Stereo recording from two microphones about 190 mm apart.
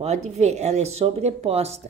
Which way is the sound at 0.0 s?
35° right (ahead or behind).